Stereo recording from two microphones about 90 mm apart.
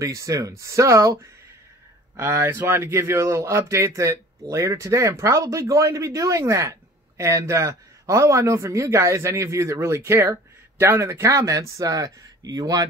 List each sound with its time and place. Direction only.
0.0 s speech: 35° right (ahead or behind)
2.1 s speech: 30° right (ahead or behind); by 12.8 s 45° right (ahead or behind)